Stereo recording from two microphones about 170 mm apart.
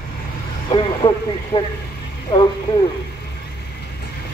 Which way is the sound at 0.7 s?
30° left (ahead or behind).